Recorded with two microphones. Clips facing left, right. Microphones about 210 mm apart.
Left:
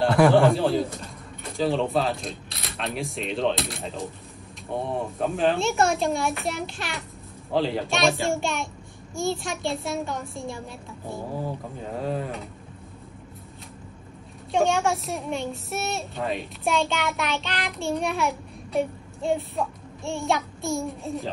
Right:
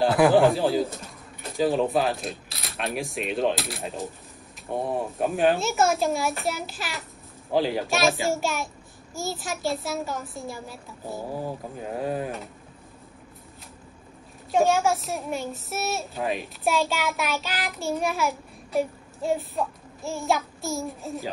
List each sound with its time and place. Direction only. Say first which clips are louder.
0.0 s a man's voice: even; centre (ahead or behind)
4.8 s speech: right 1 dB; 15° right (ahead or behind)
5.5 s a child's voice: even; centre (ahead or behind)
7.5 s speech: right 1 dB; 15° right (ahead or behind)
7.9 s a child's voice: left 1 dB; centre (ahead or behind)
14.5 s a child's voice: right 1 dB; centre (ahead or behind)